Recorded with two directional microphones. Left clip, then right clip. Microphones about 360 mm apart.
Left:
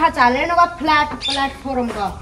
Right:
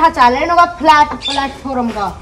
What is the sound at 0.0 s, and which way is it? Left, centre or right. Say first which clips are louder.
Speech: right 5 dB; centre.